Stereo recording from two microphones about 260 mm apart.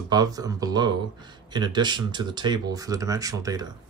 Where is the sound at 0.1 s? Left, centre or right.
Centre.